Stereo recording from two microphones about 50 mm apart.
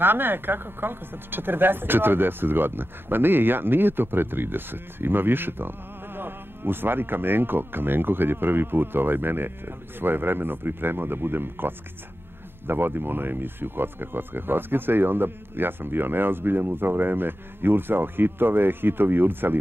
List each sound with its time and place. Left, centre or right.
0.0 s speech: right